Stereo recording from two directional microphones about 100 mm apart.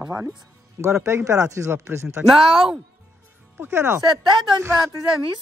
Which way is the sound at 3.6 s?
25° right (ahead or behind).